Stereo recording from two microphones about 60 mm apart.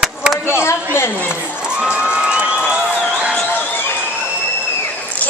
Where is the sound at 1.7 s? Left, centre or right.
Centre.